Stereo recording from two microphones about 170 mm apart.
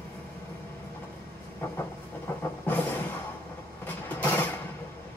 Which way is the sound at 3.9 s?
10° left (ahead or behind).